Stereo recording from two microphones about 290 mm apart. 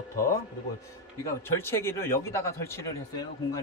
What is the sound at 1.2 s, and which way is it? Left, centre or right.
A man's voice, centre.